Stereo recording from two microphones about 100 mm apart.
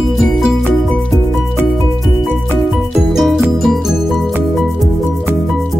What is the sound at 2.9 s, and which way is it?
Music, 5° right (ahead or behind).